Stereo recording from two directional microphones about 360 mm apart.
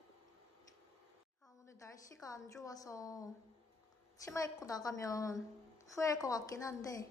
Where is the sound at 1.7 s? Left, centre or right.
Centre.